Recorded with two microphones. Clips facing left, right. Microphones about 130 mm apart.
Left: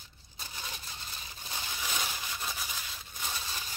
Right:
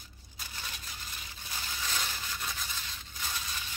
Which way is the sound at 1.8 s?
15° left (ahead or behind).